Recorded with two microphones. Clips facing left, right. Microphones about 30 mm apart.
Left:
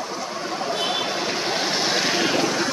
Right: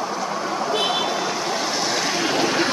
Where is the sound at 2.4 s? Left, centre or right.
Right.